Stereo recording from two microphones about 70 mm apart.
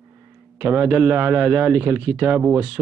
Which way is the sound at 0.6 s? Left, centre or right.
Right.